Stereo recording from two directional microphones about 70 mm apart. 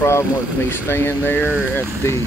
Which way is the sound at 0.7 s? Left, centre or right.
Left.